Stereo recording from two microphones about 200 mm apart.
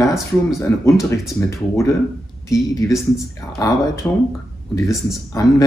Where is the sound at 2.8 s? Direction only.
15° left (ahead or behind).